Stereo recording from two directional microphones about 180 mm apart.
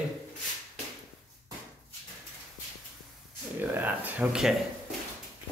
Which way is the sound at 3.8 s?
10° right (ahead or behind).